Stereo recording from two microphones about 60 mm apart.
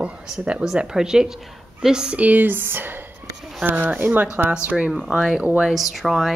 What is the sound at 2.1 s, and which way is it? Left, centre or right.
Speech, right.